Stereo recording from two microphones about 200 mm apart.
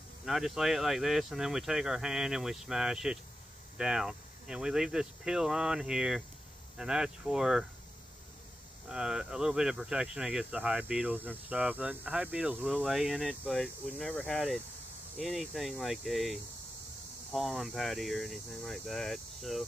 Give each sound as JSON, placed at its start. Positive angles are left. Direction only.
{"t": 0.2, "sound": "speech", "side_deg": 0}
{"t": 8.8, "sound": "speech", "side_deg": -5}